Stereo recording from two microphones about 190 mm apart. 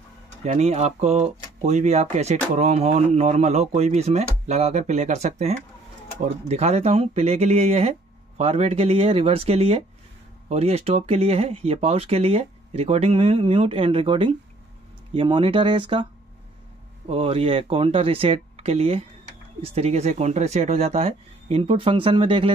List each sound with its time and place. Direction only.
0.4 s speech: 35° right (ahead or behind)
17.1 s speech: 30° right (ahead or behind)